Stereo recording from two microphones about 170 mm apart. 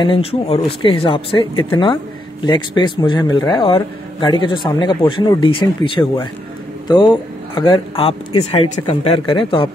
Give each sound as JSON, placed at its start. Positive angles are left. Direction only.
{"t": 0.0, "sound": "a man's voice", "side_deg": 35}